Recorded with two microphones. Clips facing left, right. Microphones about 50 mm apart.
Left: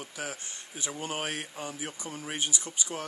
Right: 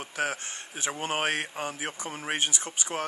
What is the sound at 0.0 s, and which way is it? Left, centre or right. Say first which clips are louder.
Speech: right 7 dB; right.